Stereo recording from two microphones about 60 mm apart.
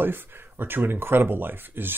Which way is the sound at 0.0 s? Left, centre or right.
Right.